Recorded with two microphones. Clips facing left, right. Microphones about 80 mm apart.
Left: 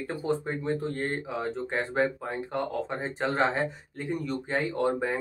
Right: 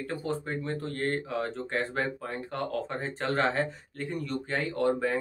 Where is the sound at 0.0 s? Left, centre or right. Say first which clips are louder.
Left 3 dB; left.